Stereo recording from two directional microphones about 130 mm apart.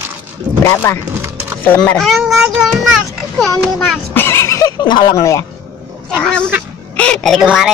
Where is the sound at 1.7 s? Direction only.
5° left (ahead or behind).